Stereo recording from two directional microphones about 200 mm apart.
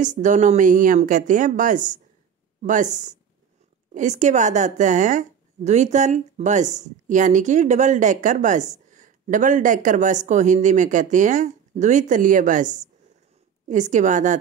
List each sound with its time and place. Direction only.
0.0 s a woman's voice: 40° right (ahead or behind)